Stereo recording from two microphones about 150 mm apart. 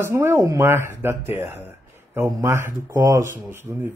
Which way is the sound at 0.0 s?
15° right (ahead or behind).